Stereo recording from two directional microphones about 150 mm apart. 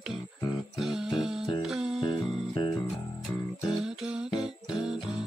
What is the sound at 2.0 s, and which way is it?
Music, 35° left (ahead or behind).